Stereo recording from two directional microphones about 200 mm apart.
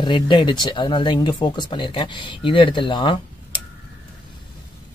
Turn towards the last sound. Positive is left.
turn(degrees=25)  # may be behind; listen again after turning